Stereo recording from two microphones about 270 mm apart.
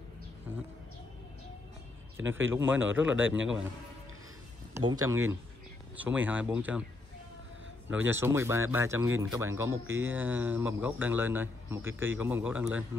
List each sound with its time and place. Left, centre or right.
0.5 s bird: centre
2.1 s speech: right
2.5 s a man's voice: centre
4.7 s a man's voice: centre
8.1 s a man's voice: centre